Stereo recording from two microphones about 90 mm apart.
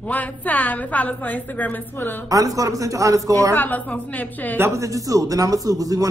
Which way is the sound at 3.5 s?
20° left (ahead or behind).